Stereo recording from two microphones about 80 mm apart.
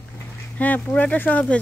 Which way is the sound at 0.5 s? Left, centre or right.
Centre.